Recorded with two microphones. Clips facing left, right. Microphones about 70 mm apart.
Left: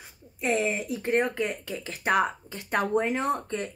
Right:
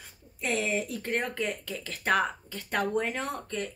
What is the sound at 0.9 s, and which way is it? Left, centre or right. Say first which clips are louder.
Speech: left 6 dB; centre.